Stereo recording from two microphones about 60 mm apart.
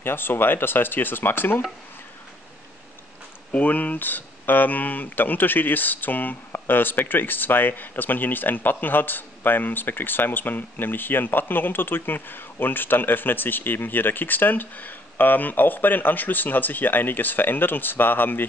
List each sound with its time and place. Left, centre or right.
0.0 s speech: left
3.5 s speech: left